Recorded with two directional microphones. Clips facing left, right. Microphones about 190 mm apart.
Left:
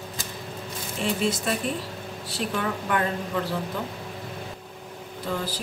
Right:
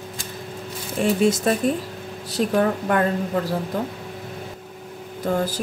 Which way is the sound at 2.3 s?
45° right (ahead or behind).